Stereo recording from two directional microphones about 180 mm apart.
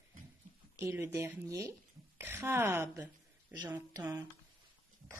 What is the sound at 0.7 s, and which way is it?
A woman's voice, 15° right (ahead or behind).